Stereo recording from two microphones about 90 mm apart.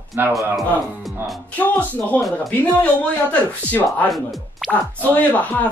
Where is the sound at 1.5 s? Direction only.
20° left (ahead or behind).